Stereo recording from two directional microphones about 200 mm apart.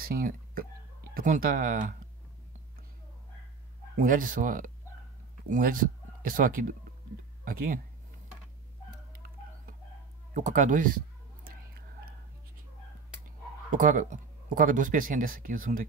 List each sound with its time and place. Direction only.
0.0 s speech: 45° right (ahead or behind)
4.0 s a man's voice: 40° right (ahead or behind)
10.3 s speech: 40° right (ahead or behind)
13.7 s speech: 40° right (ahead or behind)